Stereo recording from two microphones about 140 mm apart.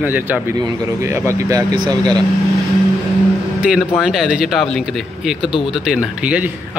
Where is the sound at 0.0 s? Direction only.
10° right (ahead or behind); by 2.2 s 30° right (ahead or behind).